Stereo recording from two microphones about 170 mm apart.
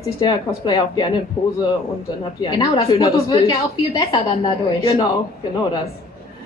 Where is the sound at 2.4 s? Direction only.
25° left (ahead or behind).